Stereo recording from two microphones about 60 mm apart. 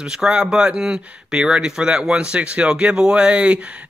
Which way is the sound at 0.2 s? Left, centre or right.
Centre.